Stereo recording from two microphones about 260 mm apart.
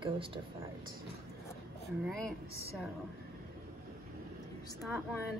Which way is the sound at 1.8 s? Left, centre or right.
Centre.